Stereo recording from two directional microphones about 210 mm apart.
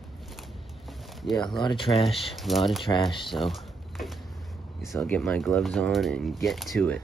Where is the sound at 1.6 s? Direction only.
25° left (ahead or behind).